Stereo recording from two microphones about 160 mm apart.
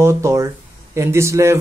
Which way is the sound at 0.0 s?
20° right (ahead or behind).